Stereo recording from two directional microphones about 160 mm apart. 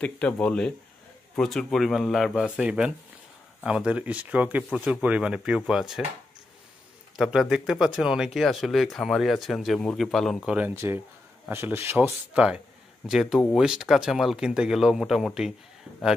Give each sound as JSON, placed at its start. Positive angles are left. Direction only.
{"t": 0.0, "sound": "speech", "side_deg": 5}
{"t": 7.2, "sound": "speech", "side_deg": 0}
{"t": 10.5, "sound": "speech", "side_deg": -15}